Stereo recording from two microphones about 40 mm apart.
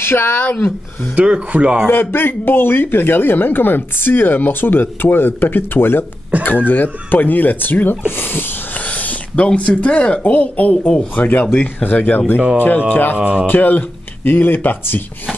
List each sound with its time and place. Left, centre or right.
0.0 s speech: left
1.1 s a man's voice: right
1.9 s a man's voice: left
6.4 s a man's voice: left
8.8 s speech: left
11.1 s speech: left